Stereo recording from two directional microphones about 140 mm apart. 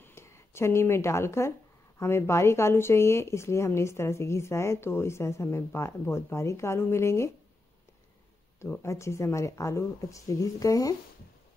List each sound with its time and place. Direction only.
0.0 s speech: 20° left (ahead or behind)
8.5 s speech: 20° left (ahead or behind)